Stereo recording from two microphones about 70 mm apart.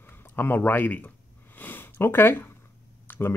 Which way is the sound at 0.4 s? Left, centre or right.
Left.